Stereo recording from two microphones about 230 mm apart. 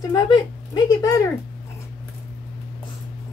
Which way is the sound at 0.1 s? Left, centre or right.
Centre.